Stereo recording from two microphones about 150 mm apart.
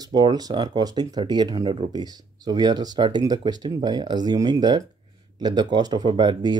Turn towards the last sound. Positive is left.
turn(degrees=-30)  # may be behind; listen again after turning